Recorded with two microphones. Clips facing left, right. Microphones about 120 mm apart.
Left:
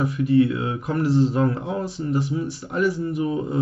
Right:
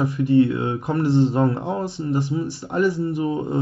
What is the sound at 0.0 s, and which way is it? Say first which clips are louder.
Speech: right 1 dB; 30° right (ahead or behind).